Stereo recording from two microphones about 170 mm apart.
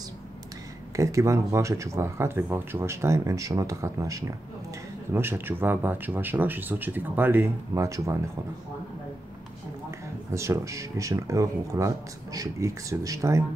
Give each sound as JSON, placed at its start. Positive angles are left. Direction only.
{"t": 0.9, "sound": "speech", "side_deg": -20}
{"t": 9.8, "sound": "speech", "side_deg": -15}